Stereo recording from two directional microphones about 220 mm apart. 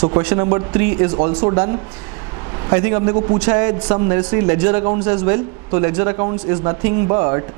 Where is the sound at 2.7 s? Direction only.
25° right (ahead or behind).